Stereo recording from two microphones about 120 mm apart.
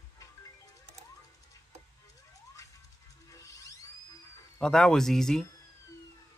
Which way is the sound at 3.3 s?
25° left (ahead or behind).